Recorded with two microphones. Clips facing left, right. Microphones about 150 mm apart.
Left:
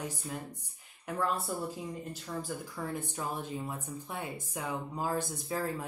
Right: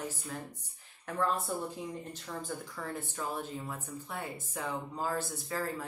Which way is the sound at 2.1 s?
10° left (ahead or behind).